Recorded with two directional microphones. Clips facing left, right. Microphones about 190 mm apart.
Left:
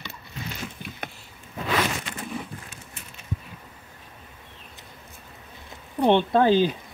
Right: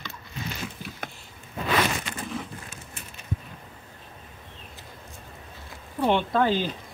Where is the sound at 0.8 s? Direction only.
60° left (ahead or behind).